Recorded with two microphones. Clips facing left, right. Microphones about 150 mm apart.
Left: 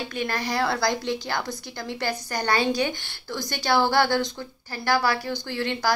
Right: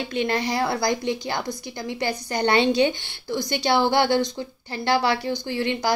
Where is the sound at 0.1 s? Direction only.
20° right (ahead or behind).